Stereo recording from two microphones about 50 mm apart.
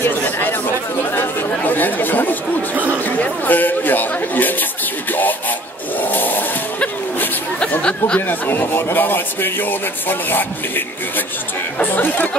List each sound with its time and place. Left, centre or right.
0.2 s chatter: left
1.7 s chatter: left
3.2 s a sound: left
6.1 s a sound: left
8.3 s speech: left
11.8 s speech: left